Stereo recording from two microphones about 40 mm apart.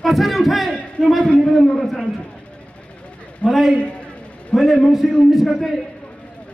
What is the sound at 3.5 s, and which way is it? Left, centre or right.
Speech, centre.